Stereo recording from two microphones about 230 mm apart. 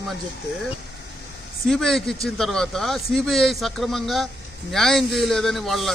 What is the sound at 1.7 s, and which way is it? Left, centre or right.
A man's voice, centre.